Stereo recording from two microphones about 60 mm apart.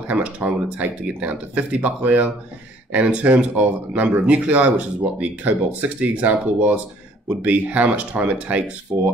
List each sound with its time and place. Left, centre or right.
0.1 s speech: right